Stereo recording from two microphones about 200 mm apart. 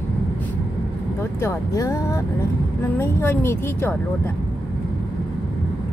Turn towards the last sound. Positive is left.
turn(degrees=10)  # may be behind; listen again after turning